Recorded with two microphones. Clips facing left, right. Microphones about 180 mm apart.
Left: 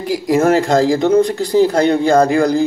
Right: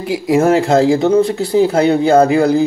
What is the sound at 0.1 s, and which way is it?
Speech, 5° right (ahead or behind).